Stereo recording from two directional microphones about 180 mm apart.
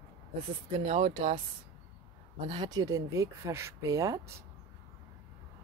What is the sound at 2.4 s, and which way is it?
Speech, 25° right (ahead or behind).